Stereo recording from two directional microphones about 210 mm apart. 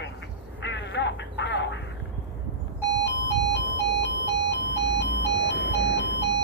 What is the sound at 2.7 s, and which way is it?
Alarm clock, 55° left (ahead or behind).